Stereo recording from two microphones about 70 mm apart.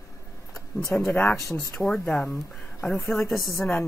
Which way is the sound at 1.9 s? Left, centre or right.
Centre.